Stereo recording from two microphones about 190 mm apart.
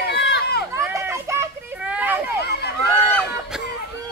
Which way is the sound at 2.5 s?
60° left (ahead or behind).